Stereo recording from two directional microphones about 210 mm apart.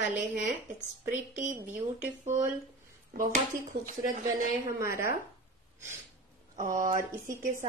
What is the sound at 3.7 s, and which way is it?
Speech, 40° right (ahead or behind).